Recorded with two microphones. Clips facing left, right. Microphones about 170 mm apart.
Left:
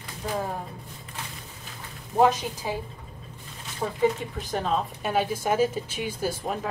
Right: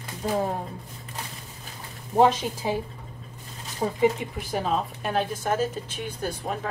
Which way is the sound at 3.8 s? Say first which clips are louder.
Right 3 dB; 25° right (ahead or behind).